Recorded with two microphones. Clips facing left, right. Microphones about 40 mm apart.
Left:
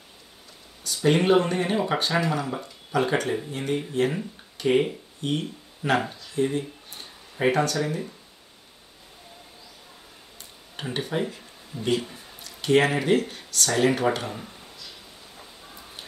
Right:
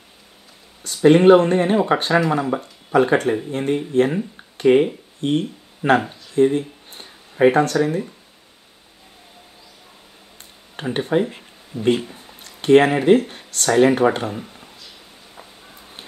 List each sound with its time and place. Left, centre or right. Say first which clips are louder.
0.8 s speech: right 9 dB; right
6.5 s a sound: right 6 dB; right
7.5 s speech: right 7 dB; right
10.8 s speech: right 8 dB; right
12.4 s a sound: right 7 dB; right
13.0 s speech: right 8 dB; right
14.3 s speech: right 5 dB; centre